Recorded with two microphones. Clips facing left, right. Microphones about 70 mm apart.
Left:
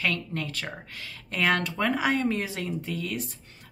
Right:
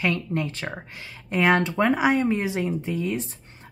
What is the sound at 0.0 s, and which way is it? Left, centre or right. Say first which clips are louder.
Speech: right 4 dB; right.